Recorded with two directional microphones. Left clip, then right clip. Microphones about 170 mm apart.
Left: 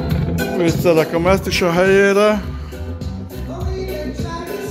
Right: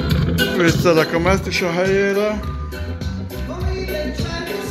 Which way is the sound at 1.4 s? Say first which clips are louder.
Left 4 dB; 30° left (ahead or behind).